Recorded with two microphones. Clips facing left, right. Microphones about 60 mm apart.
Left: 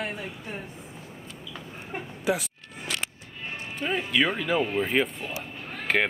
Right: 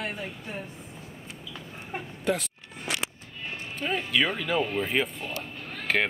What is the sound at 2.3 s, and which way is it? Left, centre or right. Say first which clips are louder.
Speech: left 1 dB; centre.